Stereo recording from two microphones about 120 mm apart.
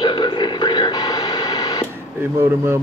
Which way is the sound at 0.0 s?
35° left (ahead or behind).